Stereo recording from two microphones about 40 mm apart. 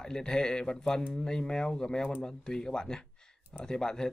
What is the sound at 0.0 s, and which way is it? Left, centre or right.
Speech, centre.